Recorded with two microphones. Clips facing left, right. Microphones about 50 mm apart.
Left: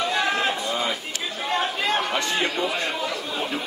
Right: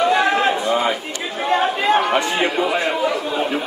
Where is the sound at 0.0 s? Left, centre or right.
Centre.